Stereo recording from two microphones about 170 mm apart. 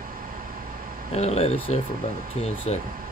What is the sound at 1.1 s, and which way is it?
Speech, 40° left (ahead or behind).